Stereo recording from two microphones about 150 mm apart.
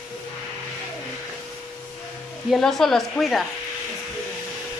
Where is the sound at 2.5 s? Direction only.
Centre (ahead or behind).